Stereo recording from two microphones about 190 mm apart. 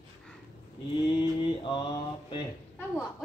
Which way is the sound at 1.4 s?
25° left (ahead or behind).